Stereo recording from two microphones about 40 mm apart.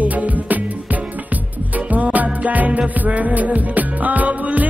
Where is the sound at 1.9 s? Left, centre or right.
Right.